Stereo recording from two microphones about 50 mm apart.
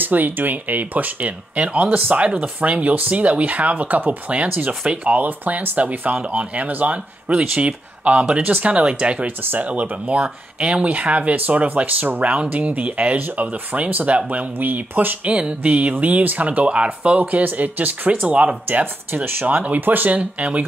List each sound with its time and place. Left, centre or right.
0.0 s speech: right
9.4 s speech: right
9.7 s speech: right
15.3 s speech: right
16.6 s speech: right
18.7 s speech: right